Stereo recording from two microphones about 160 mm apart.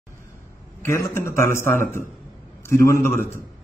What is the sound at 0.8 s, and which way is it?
A man's voice, 15° left (ahead or behind).